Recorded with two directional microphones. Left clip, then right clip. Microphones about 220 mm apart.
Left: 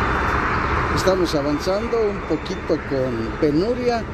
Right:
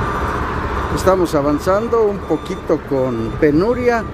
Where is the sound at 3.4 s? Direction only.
25° right (ahead or behind).